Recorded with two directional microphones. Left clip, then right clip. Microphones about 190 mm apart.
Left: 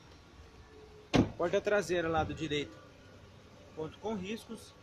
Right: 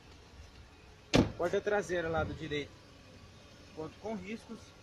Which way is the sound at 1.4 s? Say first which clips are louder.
Left 2 dB; 15° left (ahead or behind).